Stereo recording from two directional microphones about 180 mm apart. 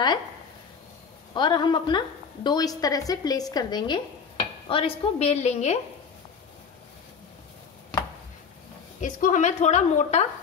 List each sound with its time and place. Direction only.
1.3 s a woman's voice: 25° left (ahead or behind)
9.0 s a woman's voice: 45° left (ahead or behind)